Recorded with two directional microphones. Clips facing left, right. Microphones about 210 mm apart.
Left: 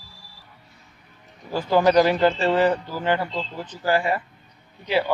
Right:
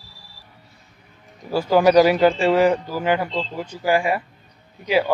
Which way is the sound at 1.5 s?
10° right (ahead or behind).